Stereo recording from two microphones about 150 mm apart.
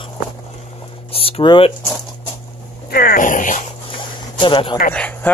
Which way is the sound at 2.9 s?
90° left.